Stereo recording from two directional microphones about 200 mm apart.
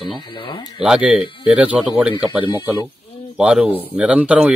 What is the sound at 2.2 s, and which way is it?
Speech, 20° left (ahead or behind).